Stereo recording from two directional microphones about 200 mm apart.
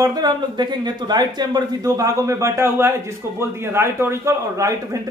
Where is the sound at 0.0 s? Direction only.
20° right (ahead or behind).